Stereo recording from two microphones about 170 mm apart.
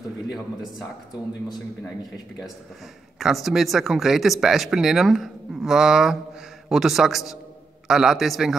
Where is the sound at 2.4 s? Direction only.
Centre (ahead or behind).